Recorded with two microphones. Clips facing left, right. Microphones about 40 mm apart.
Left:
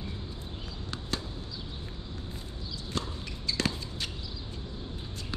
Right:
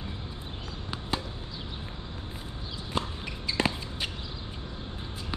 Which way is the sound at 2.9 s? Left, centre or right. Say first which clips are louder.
Right 4 dB; right.